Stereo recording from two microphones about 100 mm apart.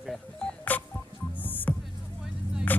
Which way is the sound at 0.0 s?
5° left (ahead or behind).